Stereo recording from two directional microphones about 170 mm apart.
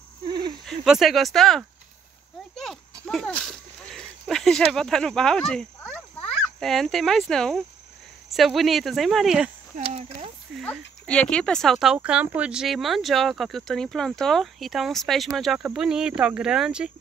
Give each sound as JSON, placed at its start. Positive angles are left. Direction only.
{"t": 0.3, "sound": "a sound", "side_deg": -25}
{"t": 0.7, "sound": "speech", "side_deg": 0}
{"t": 2.5, "sound": "a sound", "side_deg": 0}
{"t": 4.7, "sound": "speech", "side_deg": 5}
{"t": 9.8, "sound": "speech", "side_deg": -40}
{"t": 11.1, "sound": "speech", "side_deg": 5}